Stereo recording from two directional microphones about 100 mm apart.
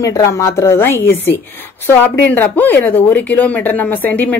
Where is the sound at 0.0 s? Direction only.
35° left (ahead or behind).